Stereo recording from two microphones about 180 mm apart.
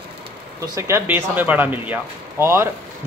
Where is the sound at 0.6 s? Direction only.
15° right (ahead or behind).